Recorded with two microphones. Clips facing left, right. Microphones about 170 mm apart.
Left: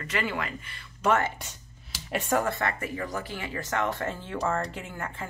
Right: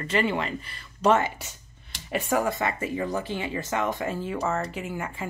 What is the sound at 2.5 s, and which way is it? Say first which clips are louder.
Speech: right 3 dB; 20° right (ahead or behind).